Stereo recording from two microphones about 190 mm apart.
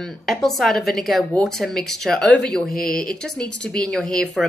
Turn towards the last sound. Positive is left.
turn(degrees=5)  # may be behind; listen again after turning